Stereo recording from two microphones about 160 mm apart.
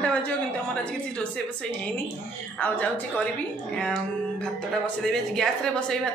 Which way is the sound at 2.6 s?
10° left (ahead or behind).